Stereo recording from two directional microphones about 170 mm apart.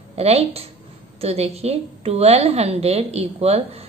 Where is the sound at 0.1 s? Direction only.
40° right (ahead or behind).